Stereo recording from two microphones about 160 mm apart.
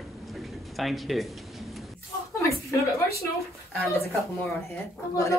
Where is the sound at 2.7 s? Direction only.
20° left (ahead or behind).